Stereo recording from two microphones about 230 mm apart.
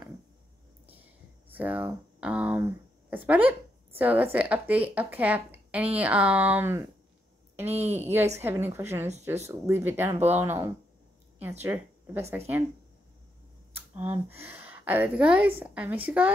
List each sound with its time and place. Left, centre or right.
1.6 s a sound: centre
4.0 s a woman's voice: centre
7.6 s a woman's voice: right
8.0 s a woman's voice: centre
13.7 s a woman's voice: centre